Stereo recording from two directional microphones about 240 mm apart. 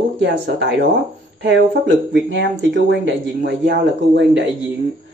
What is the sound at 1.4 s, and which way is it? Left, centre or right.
Speech, right.